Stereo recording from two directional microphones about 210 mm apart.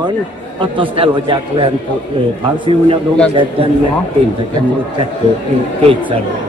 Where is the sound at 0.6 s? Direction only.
25° right (ahead or behind).